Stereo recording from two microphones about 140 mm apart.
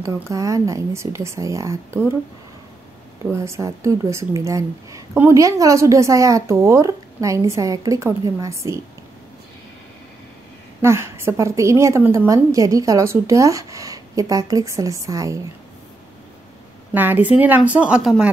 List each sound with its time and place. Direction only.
0.0 s speech: 25° right (ahead or behind)
3.2 s speech: 20° right (ahead or behind)
10.8 s speech: 20° right (ahead or behind)
16.9 s speech: 15° right (ahead or behind)